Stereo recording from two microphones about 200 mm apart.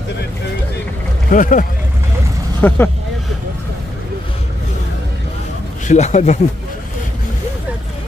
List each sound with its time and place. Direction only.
1.3 s speech: 40° left (ahead or behind)
2.6 s speech: 10° left (ahead or behind)
5.9 s speech: 35° left (ahead or behind)